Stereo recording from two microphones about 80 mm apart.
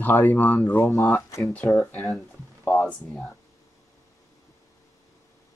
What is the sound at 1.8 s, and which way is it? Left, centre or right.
Speech, centre.